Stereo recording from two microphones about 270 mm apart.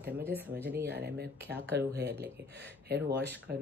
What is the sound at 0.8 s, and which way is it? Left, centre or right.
Speech, right.